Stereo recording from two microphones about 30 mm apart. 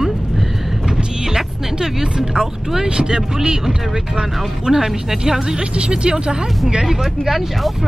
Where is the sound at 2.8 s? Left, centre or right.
Right.